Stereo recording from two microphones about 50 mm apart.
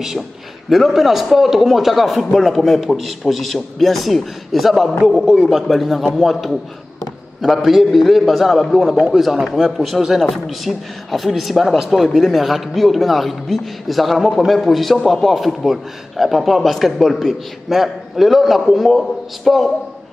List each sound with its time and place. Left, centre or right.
0.7 s a man's voice: centre
5.7 s speech: centre
8.9 s speech: centre
9.2 s speech: centre
10.3 s speech: centre